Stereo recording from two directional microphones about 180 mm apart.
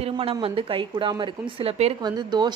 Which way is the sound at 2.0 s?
25° right (ahead or behind).